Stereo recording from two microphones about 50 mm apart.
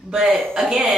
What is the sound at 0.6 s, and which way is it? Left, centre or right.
Speech, centre.